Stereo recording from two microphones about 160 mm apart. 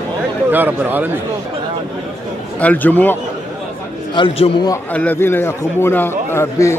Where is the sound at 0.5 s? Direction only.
10° right (ahead or behind).